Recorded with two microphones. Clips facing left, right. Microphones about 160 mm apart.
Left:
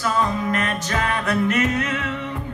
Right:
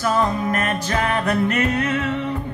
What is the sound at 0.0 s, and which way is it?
Music, 40° right (ahead or behind).